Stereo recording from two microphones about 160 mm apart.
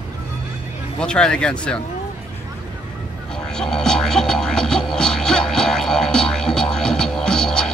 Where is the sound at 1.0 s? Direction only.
5° left (ahead or behind).